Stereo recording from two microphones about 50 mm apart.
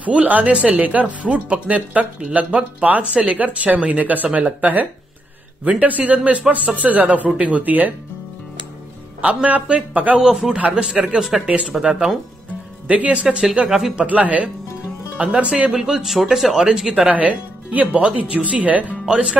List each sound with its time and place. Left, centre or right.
0.0 s a man's voice: right
9.2 s a man's voice: right
11.4 s a man's voice: right
11.7 s a man's voice: centre
12.8 s a man's voice: right
13.7 s speech: centre
14.0 s a man's voice: right
15.7 s a man's voice: centre
17.1 s a man's voice: right